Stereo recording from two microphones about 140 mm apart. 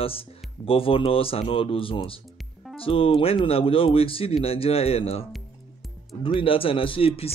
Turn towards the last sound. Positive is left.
turn(degrees=45)  # may be behind; listen again after turning